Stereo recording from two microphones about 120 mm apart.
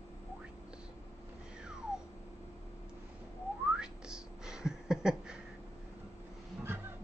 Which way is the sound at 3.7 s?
5° right (ahead or behind).